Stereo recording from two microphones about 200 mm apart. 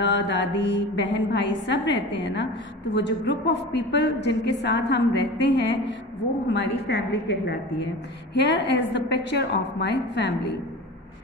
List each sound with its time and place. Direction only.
0.0 s a woman's voice: 60° left (ahead or behind)
2.9 s a woman's voice: 60° left (ahead or behind)